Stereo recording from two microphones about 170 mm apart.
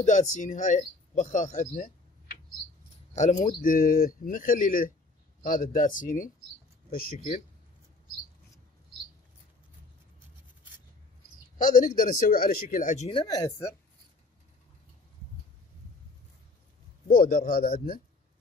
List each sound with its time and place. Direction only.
0.0 s speech: 45° left (ahead or behind)
11.5 s speech: 50° left (ahead or behind)
13.2 s speech: 20° left (ahead or behind)
17.1 s speech: 60° left (ahead or behind)